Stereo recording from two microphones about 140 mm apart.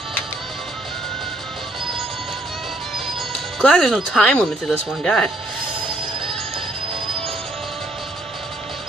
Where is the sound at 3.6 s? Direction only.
5° left (ahead or behind).